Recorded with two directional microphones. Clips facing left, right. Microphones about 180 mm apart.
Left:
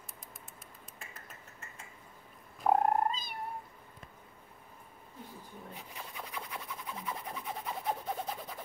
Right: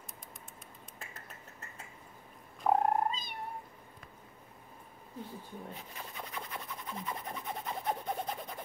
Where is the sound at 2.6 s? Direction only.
5° left (ahead or behind).